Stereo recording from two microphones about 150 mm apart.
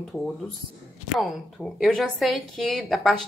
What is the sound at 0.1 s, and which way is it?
A woman's voice, centre (ahead or behind).